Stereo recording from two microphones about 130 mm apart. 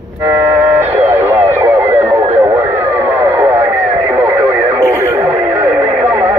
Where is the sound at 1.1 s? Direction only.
20° right (ahead or behind).